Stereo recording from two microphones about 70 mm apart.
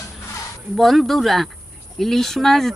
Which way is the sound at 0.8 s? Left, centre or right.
Centre.